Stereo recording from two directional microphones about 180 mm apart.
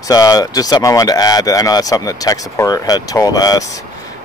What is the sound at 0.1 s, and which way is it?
Speech, 20° left (ahead or behind).